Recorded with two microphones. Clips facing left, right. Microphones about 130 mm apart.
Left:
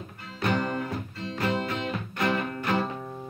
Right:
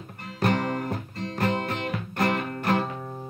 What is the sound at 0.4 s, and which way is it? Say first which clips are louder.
Music: right 2 dB; 40° right (ahead or behind).